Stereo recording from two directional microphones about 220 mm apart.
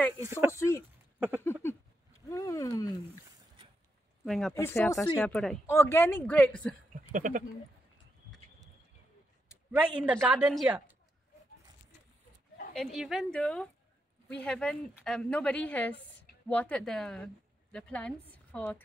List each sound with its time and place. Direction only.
0.5 s a woman's voice: 15° left (ahead or behind)
1.4 s a sound: 10° left (ahead or behind)
4.2 s speech: centre (ahead or behind)
4.6 s a woman's voice: 10° left (ahead or behind)
7.1 s speech: 35° right (ahead or behind)
9.7 s a woman's voice: 10° right (ahead or behind)
12.7 s a woman's voice: centre (ahead or behind)